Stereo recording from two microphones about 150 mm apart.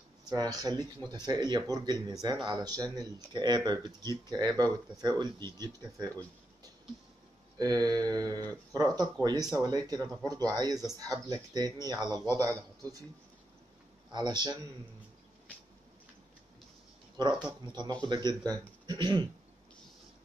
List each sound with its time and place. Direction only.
0.2 s speech: 25° right (ahead or behind)
7.5 s speech: 25° right (ahead or behind)
14.1 s speech: 30° right (ahead or behind)
17.5 s speech: 25° right (ahead or behind)